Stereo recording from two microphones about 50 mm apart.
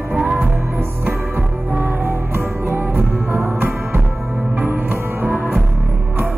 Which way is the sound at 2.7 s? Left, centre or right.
Right.